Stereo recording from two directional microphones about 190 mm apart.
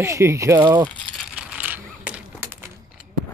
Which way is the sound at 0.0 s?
15° right (ahead or behind).